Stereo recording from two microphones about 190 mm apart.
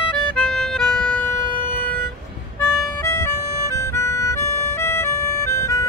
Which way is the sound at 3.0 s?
15° left (ahead or behind).